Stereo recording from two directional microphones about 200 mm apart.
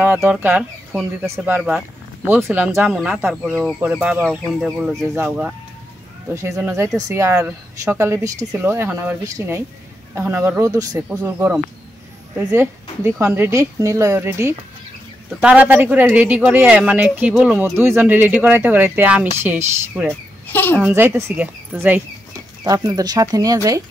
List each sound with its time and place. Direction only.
0.0 s speech: 10° right (ahead or behind)
20.1 s speech: 10° left (ahead or behind)
20.8 s speech: 10° right (ahead or behind)